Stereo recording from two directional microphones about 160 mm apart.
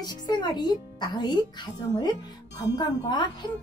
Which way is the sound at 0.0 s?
25° left (ahead or behind).